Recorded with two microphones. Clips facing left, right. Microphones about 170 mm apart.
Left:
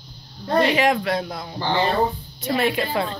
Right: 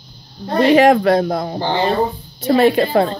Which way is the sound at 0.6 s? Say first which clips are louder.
Right 10 dB; 45° right (ahead or behind).